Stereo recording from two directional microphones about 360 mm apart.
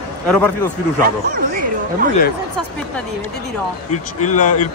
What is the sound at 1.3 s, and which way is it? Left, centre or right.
Speech, right.